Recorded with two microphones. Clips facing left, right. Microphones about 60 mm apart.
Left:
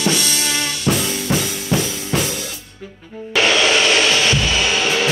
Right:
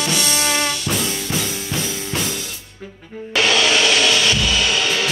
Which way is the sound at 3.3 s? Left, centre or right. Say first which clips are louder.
Left 2 dB; left.